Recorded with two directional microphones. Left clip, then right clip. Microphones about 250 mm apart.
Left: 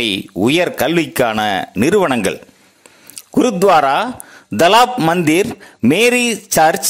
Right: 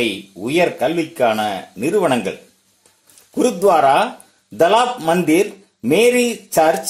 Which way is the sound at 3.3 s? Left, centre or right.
Left.